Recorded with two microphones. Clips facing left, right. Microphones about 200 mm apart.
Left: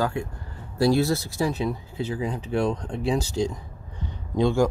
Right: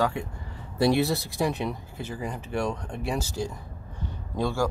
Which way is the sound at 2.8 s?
10° right (ahead or behind).